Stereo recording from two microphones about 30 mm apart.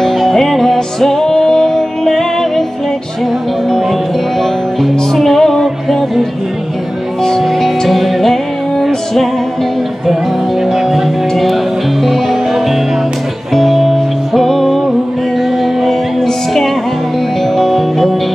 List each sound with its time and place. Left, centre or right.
0.0 s music: centre
4.8 s music: centre
7.2 s music: centre
10.7 s music: centre
15.9 s music: centre